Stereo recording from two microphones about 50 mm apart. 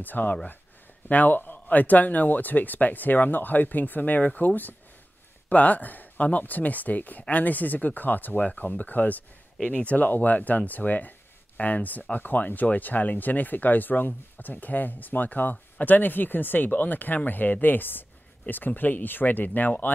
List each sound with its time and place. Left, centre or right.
0.0 s speech: left
9.6 s speech: centre
9.8 s speech: left